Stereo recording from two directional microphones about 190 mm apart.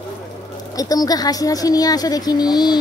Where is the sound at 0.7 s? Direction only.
20° left (ahead or behind).